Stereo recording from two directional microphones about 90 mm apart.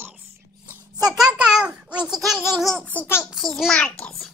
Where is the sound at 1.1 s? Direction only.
5° right (ahead or behind).